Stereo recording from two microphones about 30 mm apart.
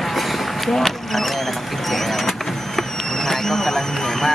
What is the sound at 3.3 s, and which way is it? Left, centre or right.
Speech, centre.